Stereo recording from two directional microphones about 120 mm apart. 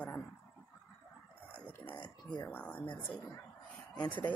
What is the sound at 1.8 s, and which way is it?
Speech, 15° left (ahead or behind).